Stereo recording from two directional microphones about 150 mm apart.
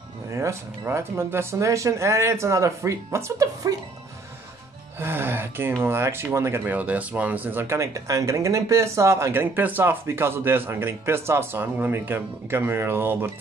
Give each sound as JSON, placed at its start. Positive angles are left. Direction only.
{"t": 0.3, "sound": "speech", "side_deg": -20}
{"t": 4.9, "sound": "speech", "side_deg": -15}